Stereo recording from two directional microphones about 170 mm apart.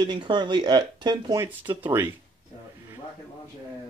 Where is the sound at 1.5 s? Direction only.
10° right (ahead or behind).